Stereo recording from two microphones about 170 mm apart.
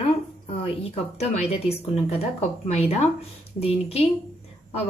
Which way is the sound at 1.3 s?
40° left (ahead or behind).